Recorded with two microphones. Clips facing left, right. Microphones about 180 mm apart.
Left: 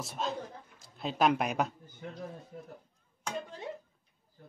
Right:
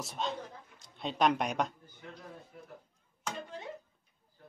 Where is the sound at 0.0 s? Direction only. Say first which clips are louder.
Left 1 dB; centre (ahead or behind).